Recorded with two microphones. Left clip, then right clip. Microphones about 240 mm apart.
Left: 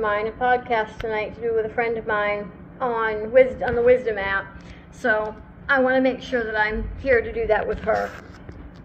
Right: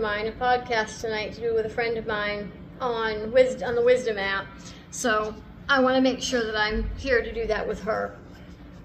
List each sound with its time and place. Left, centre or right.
0.0 s a woman's voice: right